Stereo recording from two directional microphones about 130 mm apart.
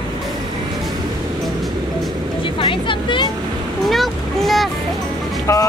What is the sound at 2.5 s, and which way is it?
Vehicle, 40° left (ahead or behind).